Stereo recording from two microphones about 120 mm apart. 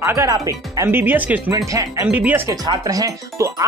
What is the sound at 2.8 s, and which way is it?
Speech, 30° right (ahead or behind).